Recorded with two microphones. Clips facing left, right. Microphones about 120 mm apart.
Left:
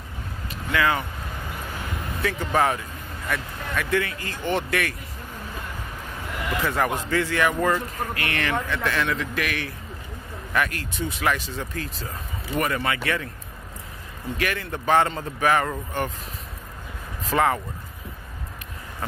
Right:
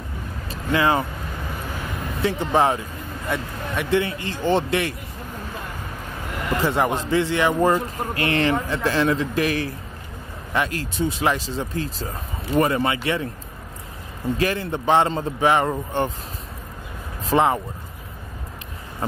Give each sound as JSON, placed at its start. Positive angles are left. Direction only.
{"t": 0.5, "sound": "vehicle", "side_deg": -30}
{"t": 2.2, "sound": "speech", "side_deg": -25}
{"t": 6.5, "sound": "a man's voice", "side_deg": -30}
{"t": 14.3, "sound": "speech", "side_deg": -30}
{"t": 17.3, "sound": "speech", "side_deg": -25}